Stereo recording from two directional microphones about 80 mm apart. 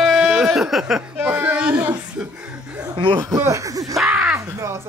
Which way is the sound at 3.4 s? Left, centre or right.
Right.